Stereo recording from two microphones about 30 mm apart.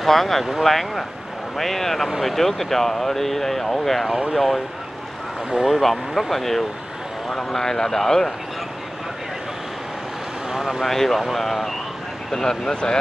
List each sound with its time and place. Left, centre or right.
0.0 s speech: centre
5.7 s speech: centre
10.5 s vehicle: centre
10.8 s speech: centre
12.3 s speech: centre